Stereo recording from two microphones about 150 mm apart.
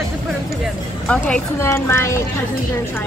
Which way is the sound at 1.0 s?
10° left (ahead or behind).